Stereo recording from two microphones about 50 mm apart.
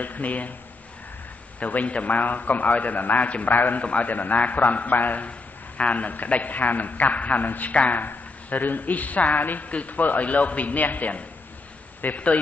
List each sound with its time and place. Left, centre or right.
0.0 s speech: left
1.6 s speech: left